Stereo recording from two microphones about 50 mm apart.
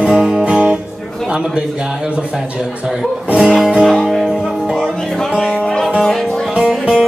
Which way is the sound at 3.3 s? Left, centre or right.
Centre.